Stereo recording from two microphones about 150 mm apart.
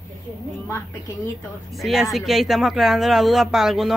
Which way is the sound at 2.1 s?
Centre (ahead or behind).